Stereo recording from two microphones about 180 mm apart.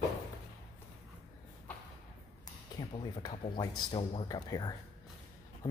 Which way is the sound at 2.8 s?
25° left (ahead or behind).